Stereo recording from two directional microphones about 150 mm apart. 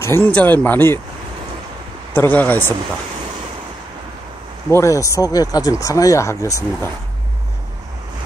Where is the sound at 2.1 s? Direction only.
10° left (ahead or behind).